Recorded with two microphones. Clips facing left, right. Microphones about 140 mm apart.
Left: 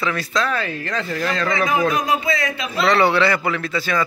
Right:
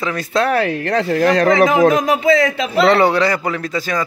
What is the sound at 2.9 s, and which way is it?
A man's voice, 45° right (ahead or behind).